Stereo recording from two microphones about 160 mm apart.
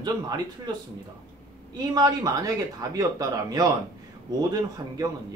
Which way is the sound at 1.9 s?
25° right (ahead or behind).